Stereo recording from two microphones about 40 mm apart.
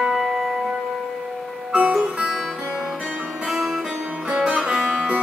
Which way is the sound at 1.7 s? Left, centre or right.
Right.